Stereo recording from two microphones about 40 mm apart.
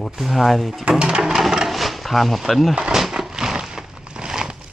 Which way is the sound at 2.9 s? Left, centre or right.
Centre.